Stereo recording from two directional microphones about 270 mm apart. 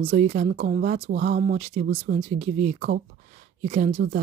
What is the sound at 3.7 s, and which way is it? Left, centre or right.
Speech, right.